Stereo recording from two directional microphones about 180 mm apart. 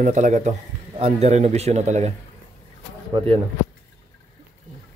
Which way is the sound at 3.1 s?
25° right (ahead or behind).